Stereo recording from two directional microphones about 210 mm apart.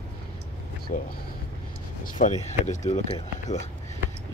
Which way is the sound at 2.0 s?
40° left (ahead or behind).